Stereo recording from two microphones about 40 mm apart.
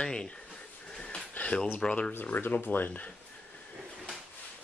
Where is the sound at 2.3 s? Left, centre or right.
Left.